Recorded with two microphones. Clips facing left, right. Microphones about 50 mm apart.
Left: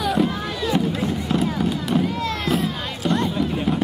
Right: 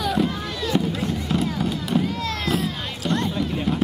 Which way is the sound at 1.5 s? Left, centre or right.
Centre.